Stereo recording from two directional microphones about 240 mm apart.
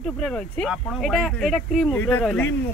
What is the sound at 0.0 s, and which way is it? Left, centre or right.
Speech, centre.